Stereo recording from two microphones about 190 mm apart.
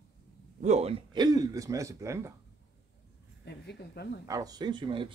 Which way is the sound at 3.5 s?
60° left (ahead or behind).